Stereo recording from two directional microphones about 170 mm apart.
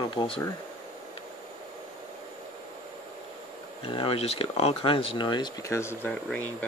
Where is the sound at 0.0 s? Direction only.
30° left (ahead or behind).